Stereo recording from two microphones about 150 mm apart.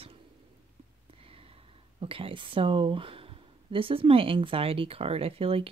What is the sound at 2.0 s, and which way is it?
Speech, 35° right (ahead or behind).